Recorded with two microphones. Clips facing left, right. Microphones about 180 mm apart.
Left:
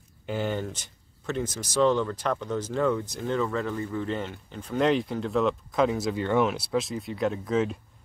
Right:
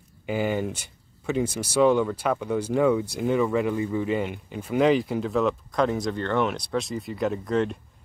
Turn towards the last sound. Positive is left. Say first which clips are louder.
# right 1 dB
turn(degrees=0)  # may be behind; listen again after turning